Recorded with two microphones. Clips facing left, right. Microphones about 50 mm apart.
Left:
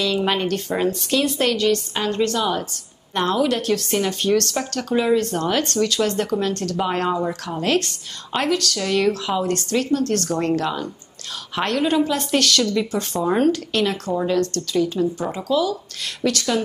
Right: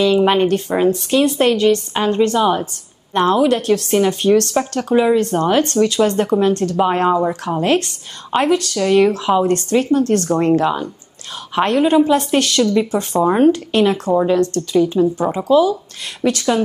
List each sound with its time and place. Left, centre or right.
0.0 s a woman's voice: centre
3.2 s a woman's voice: centre